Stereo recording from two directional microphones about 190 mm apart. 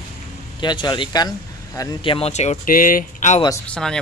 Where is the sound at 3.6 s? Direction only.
5° left (ahead or behind).